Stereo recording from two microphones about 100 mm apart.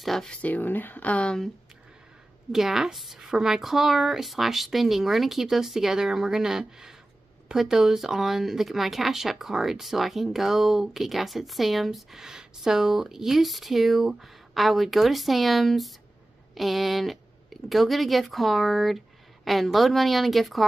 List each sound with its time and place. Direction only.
0.0 s speech: 5° left (ahead or behind)
2.5 s speech: 5° right (ahead or behind)